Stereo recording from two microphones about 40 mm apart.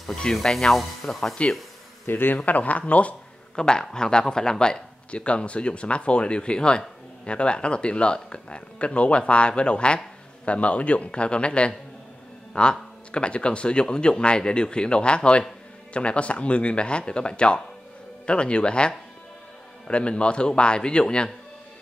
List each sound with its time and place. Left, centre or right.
0.3 s speech: centre
2.0 s a man's voice: left
2.3 s a man's voice: left
3.5 s a man's voice: centre